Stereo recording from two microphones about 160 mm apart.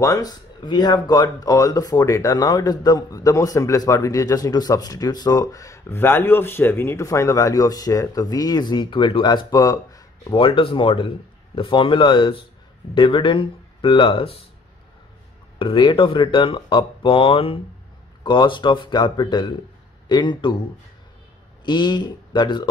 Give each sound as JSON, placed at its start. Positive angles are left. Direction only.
{"t": 0.0, "sound": "speech", "side_deg": 20}
{"t": 15.6, "sound": "speech", "side_deg": 30}
{"t": 21.6, "sound": "speech", "side_deg": 30}